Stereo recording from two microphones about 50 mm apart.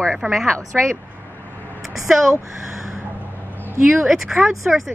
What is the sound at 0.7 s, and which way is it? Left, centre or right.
Speech, right.